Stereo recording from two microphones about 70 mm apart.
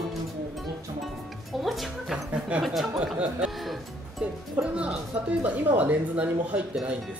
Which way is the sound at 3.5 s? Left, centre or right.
Centre.